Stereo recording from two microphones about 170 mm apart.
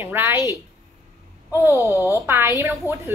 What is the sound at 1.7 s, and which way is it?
Speech, 20° left (ahead or behind).